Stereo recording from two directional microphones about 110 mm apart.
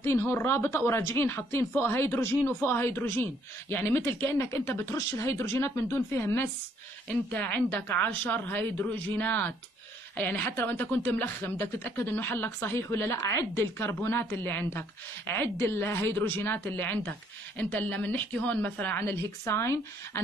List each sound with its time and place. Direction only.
0.0 s a woman's voice: 25° left (ahead or behind)